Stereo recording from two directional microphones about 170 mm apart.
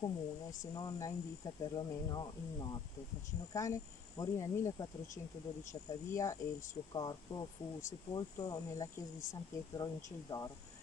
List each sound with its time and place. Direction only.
0.0 s speech: 20° left (ahead or behind)
4.2 s speech: 20° left (ahead or behind)
10.3 s speech: 30° left (ahead or behind)